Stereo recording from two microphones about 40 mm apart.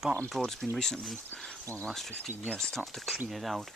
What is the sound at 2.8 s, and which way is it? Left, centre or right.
Speech, centre.